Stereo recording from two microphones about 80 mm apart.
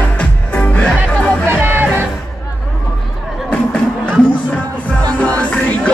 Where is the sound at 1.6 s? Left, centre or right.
Right.